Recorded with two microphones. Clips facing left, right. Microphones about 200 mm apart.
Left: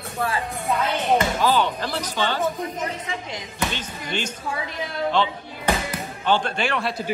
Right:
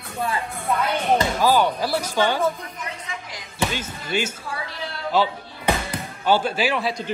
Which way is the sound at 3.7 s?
10° right (ahead or behind).